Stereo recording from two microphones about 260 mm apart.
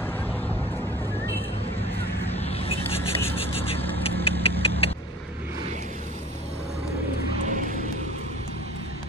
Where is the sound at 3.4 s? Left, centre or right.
Left.